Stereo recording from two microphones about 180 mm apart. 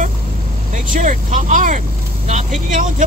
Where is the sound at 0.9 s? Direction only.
45° right (ahead or behind).